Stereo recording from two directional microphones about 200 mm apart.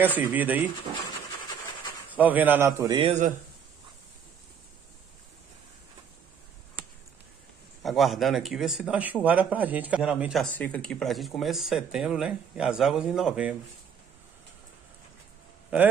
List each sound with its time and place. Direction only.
0.3 s a man's voice: 10° right (ahead or behind)
2.1 s a man's voice: 10° right (ahead or behind)
2.9 s a man's voice: 30° right (ahead or behind)
7.8 s speech: centre (ahead or behind)
10.5 s speech: 5° left (ahead or behind)